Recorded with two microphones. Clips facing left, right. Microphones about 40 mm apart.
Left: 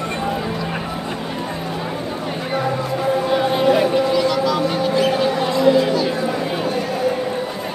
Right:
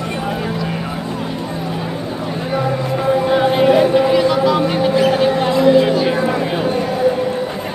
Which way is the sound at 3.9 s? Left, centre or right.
Right.